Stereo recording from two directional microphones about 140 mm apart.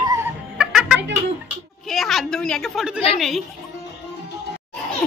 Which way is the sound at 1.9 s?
Centre (ahead or behind).